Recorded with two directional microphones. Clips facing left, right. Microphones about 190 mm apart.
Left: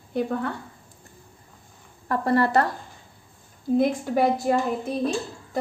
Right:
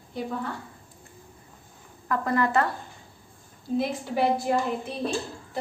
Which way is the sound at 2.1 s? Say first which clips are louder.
Left 3 dB; 35° left (ahead or behind).